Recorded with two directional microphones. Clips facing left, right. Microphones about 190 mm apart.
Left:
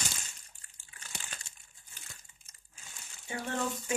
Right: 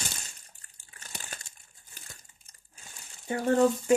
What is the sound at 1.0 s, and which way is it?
Crumpling, 40° right (ahead or behind).